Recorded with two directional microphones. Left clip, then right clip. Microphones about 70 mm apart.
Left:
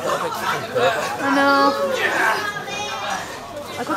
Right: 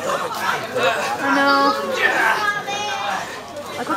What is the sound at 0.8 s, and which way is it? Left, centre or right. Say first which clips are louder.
Speech: even; centre.